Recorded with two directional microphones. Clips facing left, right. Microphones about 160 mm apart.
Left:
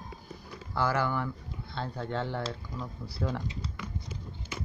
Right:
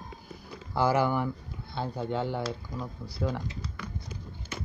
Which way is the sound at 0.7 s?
15° right (ahead or behind).